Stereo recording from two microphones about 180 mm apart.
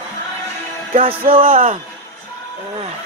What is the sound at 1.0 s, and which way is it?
Speech, 30° right (ahead or behind).